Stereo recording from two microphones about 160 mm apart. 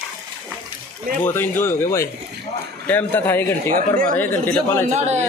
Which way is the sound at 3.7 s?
60° right (ahead or behind).